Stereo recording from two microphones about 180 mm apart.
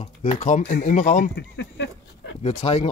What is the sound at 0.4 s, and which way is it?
Speech, 45° left (ahead or behind).